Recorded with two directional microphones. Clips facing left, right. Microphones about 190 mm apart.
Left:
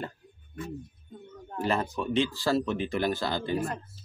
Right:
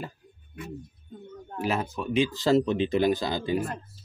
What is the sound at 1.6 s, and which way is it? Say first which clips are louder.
Speech: even; 5° right (ahead or behind).